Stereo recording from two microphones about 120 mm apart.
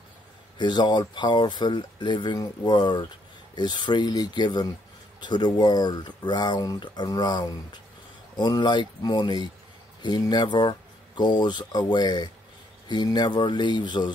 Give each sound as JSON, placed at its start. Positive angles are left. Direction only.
{"t": 0.6, "sound": "speech", "side_deg": 40}